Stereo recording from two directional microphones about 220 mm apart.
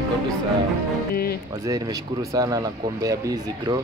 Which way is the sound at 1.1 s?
45° left (ahead or behind).